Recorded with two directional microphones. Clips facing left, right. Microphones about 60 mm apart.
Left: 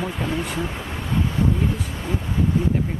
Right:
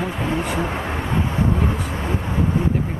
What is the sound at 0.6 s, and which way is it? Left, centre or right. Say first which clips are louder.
Vehicle: right 5 dB; right.